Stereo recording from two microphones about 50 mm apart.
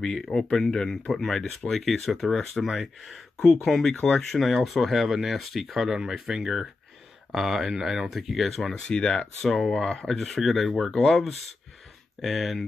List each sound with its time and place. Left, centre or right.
0.0 s speech: centre
8.7 s speech: centre